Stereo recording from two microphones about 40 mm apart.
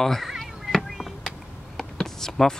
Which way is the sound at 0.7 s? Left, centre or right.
Centre.